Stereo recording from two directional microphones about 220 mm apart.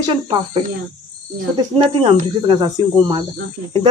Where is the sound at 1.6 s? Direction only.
25° right (ahead or behind).